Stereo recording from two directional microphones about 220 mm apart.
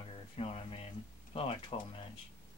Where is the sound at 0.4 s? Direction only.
25° left (ahead or behind).